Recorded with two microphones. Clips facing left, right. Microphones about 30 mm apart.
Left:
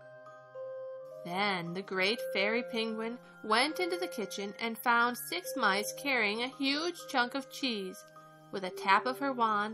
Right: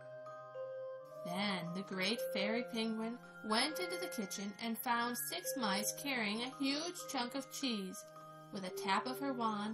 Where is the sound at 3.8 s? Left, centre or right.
Left.